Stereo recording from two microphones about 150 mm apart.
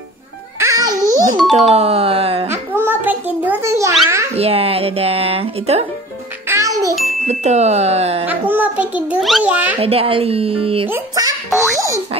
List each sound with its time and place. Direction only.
0.6 s music: 20° right (ahead or behind)
1.4 s a child's voice: centre (ahead or behind)
1.7 s speech: 45° right (ahead or behind)
2.4 s music: 15° right (ahead or behind)
4.4 s speech: 40° right (ahead or behind)
6.4 s music: 20° right (ahead or behind)
7.2 s speech: 45° right (ahead or behind)
8.3 s a child's voice: 10° right (ahead or behind)
9.8 s speech: 40° right (ahead or behind)
10.9 s a child's voice: 25° right (ahead or behind)
11.7 s music: 20° right (ahead or behind)